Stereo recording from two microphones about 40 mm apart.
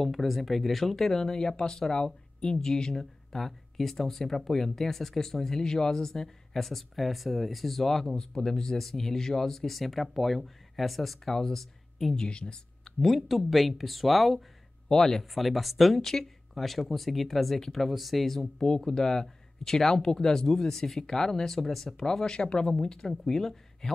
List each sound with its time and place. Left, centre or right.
0.0 s speech: centre
12.2 s speech: left
13.0 s speech: centre
14.9 s speech: centre
15.3 s speech: centre
18.6 s speech: centre